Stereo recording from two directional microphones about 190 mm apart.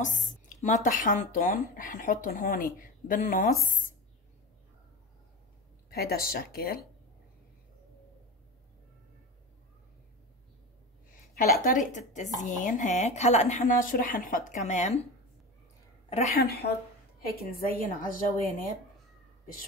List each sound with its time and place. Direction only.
0.0 s speech: 40° left (ahead or behind)
5.9 s speech: 55° left (ahead or behind)
11.6 s speech: 40° left (ahead or behind)
16.1 s a woman's voice: 35° left (ahead or behind)
16.3 s a woman's voice: 55° left (ahead or behind)